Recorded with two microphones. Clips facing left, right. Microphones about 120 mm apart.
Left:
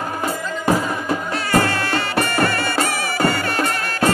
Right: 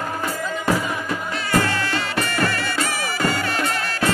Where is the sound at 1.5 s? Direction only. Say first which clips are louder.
Left 3 dB; 55° left (ahead or behind).